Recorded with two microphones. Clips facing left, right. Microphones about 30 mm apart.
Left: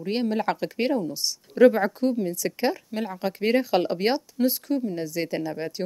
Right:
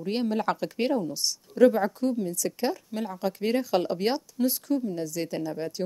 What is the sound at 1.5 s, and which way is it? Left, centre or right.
A woman's voice, left.